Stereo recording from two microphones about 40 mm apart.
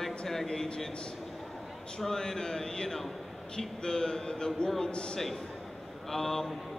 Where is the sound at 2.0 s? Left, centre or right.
Centre.